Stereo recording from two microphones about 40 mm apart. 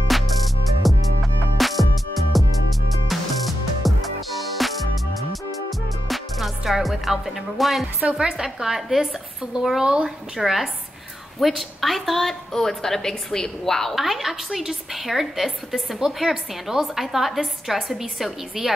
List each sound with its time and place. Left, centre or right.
0.8 s music: centre
6.0 s music: centre
8.1 s speech: right
10.3 s a woman's voice: centre
13.9 s a woman's voice: centre